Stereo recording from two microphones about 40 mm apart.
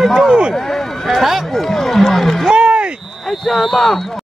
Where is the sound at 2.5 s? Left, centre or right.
Right.